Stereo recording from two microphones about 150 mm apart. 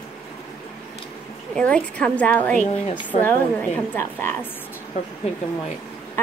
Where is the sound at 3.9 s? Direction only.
15° left (ahead or behind).